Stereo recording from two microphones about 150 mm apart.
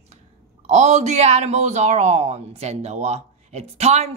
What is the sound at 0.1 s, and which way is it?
Speech, 50° right (ahead or behind).